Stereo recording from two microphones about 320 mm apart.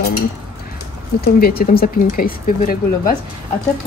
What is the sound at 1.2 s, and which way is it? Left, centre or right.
Speech, left.